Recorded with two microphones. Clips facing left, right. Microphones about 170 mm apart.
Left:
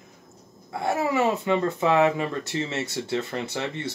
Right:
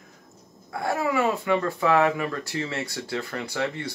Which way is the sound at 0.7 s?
20° left (ahead or behind).